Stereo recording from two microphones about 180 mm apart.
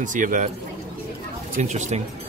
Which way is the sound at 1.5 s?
40° right (ahead or behind).